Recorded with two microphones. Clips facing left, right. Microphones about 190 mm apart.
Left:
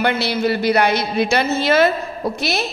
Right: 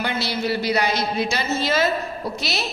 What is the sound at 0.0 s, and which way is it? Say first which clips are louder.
A woman's voice: left 6 dB; 60° left (ahead or behind).